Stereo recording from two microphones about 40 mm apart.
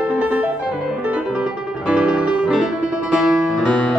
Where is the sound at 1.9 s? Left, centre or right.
Right.